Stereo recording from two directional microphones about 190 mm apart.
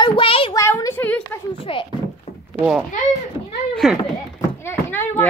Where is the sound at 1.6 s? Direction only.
30° left (ahead or behind).